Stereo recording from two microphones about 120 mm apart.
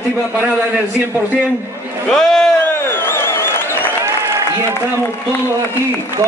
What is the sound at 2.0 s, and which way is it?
Speech, 5° left (ahead or behind).